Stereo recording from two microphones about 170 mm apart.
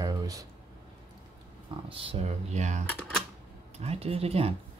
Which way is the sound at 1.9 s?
35° right (ahead or behind).